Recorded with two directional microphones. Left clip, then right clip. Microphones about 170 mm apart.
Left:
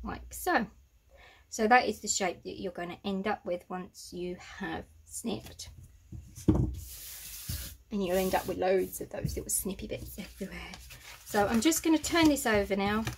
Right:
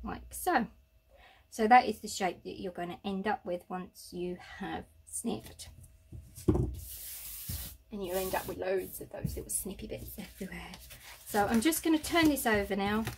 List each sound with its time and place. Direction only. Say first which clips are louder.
0.0 s a sound: even; 5° left (ahead or behind)
1.5 s a woman's voice: right 1 dB; 5° left (ahead or behind)
7.9 s a woman's voice: left 5 dB; 35° left (ahead or behind); by 13.0 s 5° left (ahead or behind)